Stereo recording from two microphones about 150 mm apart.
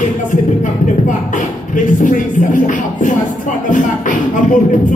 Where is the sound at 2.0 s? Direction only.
60° left (ahead or behind).